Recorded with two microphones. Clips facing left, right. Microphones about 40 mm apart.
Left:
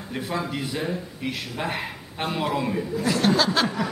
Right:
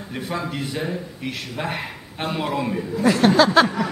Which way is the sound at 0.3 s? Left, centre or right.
Centre.